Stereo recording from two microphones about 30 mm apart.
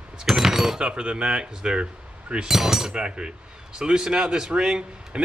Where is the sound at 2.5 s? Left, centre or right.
Centre.